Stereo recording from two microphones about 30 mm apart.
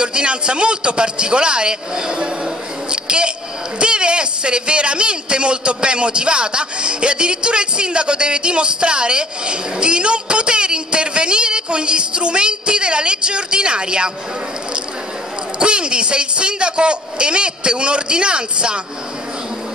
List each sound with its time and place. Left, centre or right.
0.0 s a man's voice: right
2.9 s a sound: right
3.8 s a man's voice: right
15.6 s a man's voice: right